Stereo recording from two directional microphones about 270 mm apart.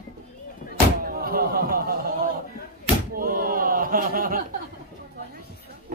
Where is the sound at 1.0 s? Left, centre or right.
Right.